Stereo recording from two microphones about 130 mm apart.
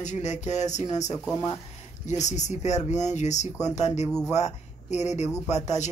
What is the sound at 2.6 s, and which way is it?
Speech, 60° left (ahead or behind).